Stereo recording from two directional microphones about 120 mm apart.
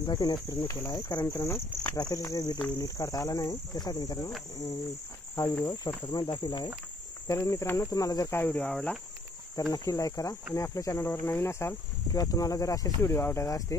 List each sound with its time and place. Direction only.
0.0 s cricket: 35° left (ahead or behind)
5.3 s cricket: 30° left (ahead or behind)
7.2 s speech: 25° left (ahead or behind)
8.7 s cricket: 5° left (ahead or behind)
9.6 s speech: 25° left (ahead or behind)